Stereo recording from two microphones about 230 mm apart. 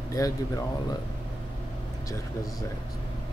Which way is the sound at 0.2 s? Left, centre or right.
Centre.